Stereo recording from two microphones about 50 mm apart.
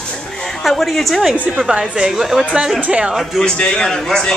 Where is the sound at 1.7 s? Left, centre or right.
Right.